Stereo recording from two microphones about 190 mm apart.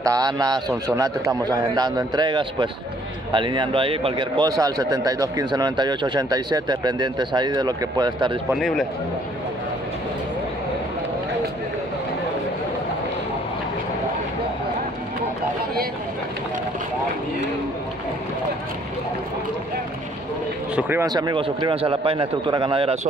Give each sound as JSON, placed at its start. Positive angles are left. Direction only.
{"t": 0.0, "sound": "a man's voice", "side_deg": -20}
{"t": 8.5, "sound": "speech", "side_deg": 0}
{"t": 20.7, "sound": "a man's voice", "side_deg": -15}